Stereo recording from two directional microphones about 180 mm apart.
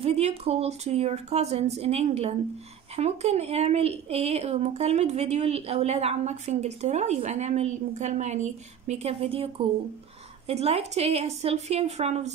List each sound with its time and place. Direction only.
0.0 s speech: 35° right (ahead or behind)